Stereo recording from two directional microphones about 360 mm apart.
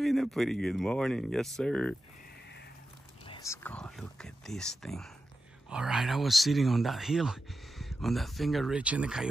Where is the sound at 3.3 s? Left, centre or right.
Centre.